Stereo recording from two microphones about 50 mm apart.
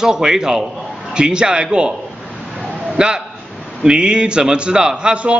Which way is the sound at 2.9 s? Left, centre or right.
Centre.